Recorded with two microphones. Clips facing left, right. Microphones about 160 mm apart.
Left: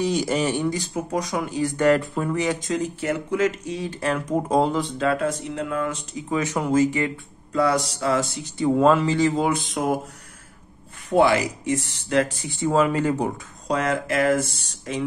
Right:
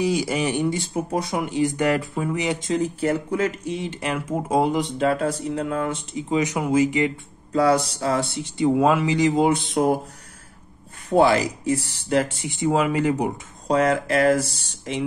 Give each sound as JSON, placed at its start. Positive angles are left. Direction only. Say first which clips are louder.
{"t": 0.0, "sound": "speech", "louder": "even", "side_deg": -10}
{"t": 2.4, "sound": "speech", "louder": "right 1 dB", "side_deg": -20}
{"t": 4.0, "sound": "speech", "louder": "left 5 dB", "side_deg": -10}
{"t": 4.9, "sound": "speech", "louder": "right 1 dB", "side_deg": -25}
{"t": 6.6, "sound": "speech", "louder": "left 1 dB", "side_deg": -10}
{"t": 7.5, "sound": "speech", "louder": "right 2 dB", "side_deg": -30}
{"t": 8.7, "sound": "speech", "louder": "left 3 dB", "side_deg": -10}
{"t": 11.1, "sound": "speech", "louder": "right 1 dB", "side_deg": -30}
{"t": 13.7, "sound": "speech", "louder": "right 4 dB", "side_deg": -30}